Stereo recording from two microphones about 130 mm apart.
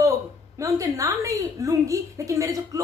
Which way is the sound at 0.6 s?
25° right (ahead or behind).